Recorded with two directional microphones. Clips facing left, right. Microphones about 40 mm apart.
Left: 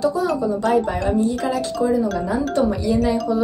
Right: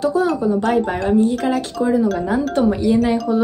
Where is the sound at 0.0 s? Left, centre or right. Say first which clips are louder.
Right 2 dB; right.